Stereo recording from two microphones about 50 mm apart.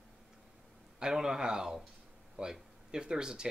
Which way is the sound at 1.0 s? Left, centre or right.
Centre.